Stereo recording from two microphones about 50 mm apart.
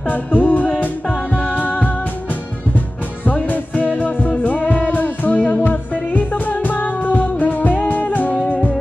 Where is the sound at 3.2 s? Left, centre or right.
Left.